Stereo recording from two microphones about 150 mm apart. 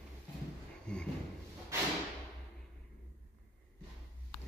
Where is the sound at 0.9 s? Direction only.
5° left (ahead or behind).